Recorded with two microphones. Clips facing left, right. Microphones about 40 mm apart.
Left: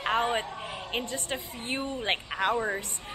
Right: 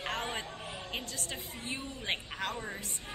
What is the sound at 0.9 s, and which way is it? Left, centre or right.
A woman's voice, left.